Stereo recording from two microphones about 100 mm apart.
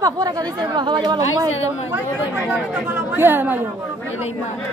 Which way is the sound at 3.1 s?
20° right (ahead or behind).